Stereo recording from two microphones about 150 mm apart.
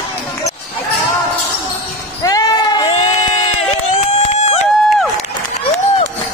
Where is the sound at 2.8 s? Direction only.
40° left (ahead or behind).